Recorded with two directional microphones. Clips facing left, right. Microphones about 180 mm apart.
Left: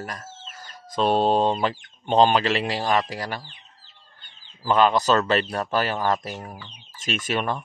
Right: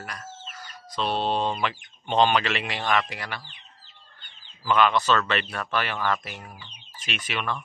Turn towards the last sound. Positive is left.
turn(degrees=45)  # may be behind; listen again after turning